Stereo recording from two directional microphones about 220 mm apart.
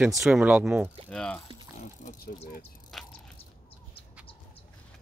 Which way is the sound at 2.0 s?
35° left (ahead or behind).